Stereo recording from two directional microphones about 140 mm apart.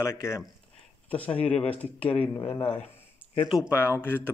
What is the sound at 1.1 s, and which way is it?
Speech, 10° left (ahead or behind).